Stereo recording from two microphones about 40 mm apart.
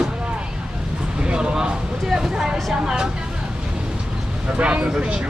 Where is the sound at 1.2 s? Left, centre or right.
Right.